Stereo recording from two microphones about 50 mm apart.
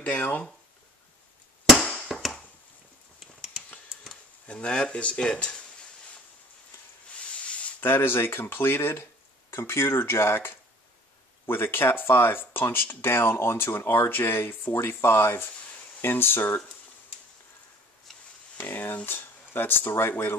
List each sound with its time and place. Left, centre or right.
0.0 s speech: left
1.8 s chop: centre
4.5 s speech: left
7.4 s a sound: left
7.8 s speech: left
9.5 s speech: left
18.6 s a sound: left
19.0 s speech: left